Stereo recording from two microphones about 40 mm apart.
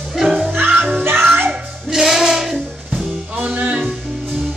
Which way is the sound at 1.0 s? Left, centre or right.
Right.